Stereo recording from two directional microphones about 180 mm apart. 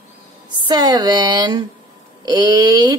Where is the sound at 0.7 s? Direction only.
20° right (ahead or behind).